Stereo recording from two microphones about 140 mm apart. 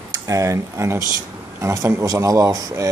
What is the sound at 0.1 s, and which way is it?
Speech, 20° right (ahead or behind).